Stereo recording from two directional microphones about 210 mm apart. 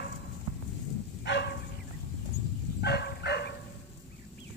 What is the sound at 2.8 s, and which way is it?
Bow-wow, 50° left (ahead or behind).